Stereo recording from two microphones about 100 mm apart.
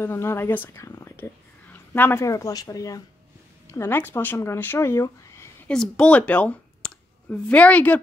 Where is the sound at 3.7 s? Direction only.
20° left (ahead or behind).